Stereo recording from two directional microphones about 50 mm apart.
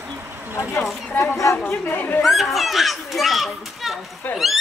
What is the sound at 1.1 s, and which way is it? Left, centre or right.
Speech, left.